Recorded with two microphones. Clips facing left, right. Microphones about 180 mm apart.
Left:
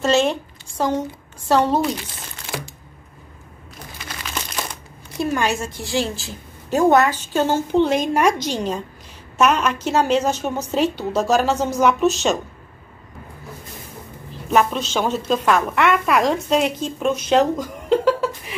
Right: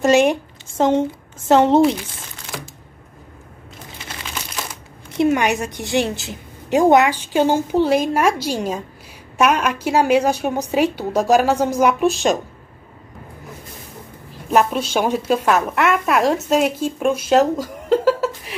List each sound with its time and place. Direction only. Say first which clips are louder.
0.0 s a woman's voice: right 4 dB; 15° right (ahead or behind)
2.5 s a sound: left 2 dB; 5° left (ahead or behind)
5.1 s a woman's voice: right 4 dB; 20° right (ahead or behind)
14.5 s a woman's voice: right 2 dB; 5° right (ahead or behind)